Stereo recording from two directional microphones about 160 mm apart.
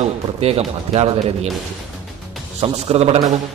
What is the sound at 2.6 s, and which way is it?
Speech, 40° right (ahead or behind).